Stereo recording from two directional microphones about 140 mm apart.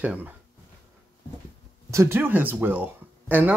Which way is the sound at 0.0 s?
10° right (ahead or behind).